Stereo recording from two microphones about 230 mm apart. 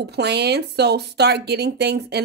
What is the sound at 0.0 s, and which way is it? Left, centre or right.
Speech, right.